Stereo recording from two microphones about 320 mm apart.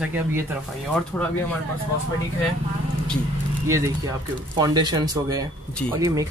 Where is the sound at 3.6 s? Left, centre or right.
Centre.